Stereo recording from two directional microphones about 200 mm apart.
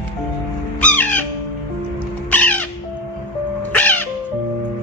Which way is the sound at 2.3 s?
5° left (ahead or behind).